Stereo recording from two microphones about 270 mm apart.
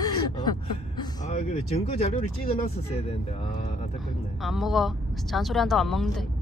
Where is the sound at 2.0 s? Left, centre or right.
Left.